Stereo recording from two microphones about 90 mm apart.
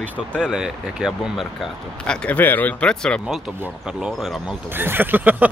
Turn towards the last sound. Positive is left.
turn(degrees=-20)  # may be behind; listen again after turning